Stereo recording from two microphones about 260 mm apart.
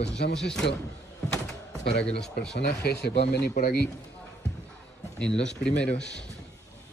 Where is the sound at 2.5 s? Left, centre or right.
Left.